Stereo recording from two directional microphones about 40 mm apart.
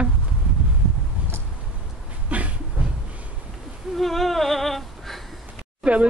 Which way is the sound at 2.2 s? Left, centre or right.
Right.